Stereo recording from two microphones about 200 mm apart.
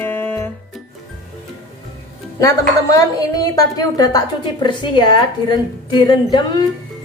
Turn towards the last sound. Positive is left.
turn(degrees=20)  # may be behind; listen again after turning